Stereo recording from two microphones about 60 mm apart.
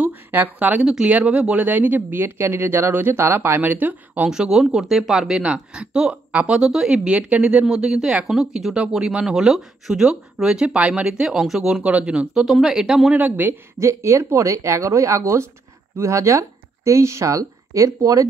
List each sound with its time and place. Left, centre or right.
0.0 s speech: right
0.8 s speech: centre
1.1 s speech: right
4.3 s speech: centre
5.4 s speech: centre
7.6 s speech: centre
8.3 s speech: centre
8.7 s speech: centre
12.4 s speech: centre
13.1 s speech: right
13.7 s speech: right